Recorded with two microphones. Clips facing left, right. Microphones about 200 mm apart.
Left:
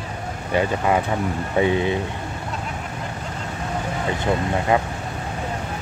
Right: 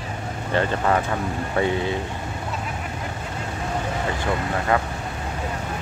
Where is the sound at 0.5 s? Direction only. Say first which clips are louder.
Left 1 dB; 10° left (ahead or behind).